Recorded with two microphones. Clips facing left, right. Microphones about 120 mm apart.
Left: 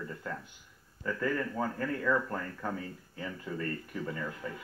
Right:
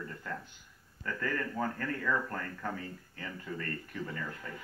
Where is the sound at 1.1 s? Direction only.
15° left (ahead or behind).